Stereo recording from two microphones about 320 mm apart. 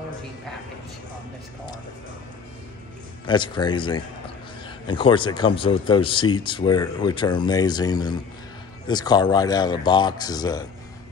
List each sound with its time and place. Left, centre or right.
3.3 s speech: centre